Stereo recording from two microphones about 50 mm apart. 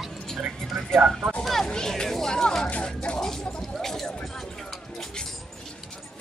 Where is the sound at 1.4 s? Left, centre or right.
Centre.